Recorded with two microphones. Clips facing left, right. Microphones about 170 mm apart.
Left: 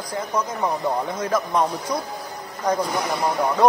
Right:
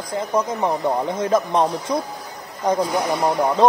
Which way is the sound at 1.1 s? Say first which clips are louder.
Right 3 dB; 25° right (ahead or behind).